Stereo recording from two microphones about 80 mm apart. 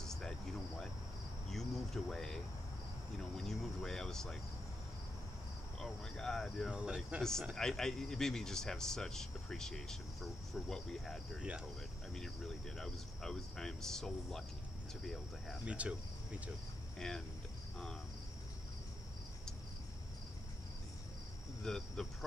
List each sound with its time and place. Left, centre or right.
0.0 s cricket: centre
1.5 s speech: centre
5.8 s speech: centre
6.8 s speech: centre
7.2 s speech: centre
15.6 s insect: centre
21.6 s speech: centre